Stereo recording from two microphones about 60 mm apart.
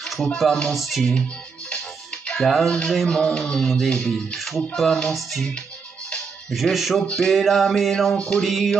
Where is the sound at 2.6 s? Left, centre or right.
Centre.